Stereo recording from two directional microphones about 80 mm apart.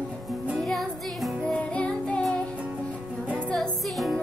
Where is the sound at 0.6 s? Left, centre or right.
Centre.